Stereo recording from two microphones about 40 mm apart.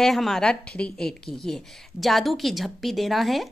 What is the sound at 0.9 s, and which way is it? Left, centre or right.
Speech, centre.